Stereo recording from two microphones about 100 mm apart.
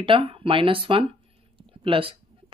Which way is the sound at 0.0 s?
65° right (ahead or behind).